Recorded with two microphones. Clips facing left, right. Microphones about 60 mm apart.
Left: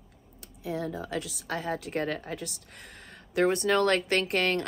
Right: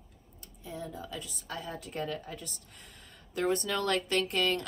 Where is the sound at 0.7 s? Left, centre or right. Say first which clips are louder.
Left 7 dB; left.